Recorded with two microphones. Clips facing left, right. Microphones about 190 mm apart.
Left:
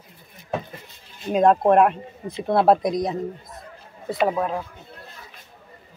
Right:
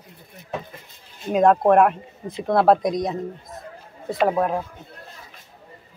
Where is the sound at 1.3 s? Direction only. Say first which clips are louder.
Right 1 dB; centre (ahead or behind).